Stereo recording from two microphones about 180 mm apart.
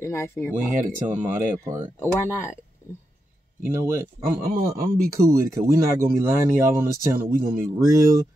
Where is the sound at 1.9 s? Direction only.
15° left (ahead or behind).